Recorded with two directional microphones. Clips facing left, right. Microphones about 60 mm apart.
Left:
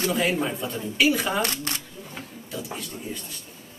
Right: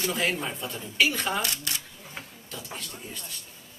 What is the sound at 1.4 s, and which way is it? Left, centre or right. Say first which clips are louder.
Speech: left 5 dB; left.